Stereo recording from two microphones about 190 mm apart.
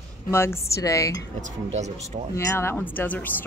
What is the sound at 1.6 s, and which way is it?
Speech, 35° right (ahead or behind).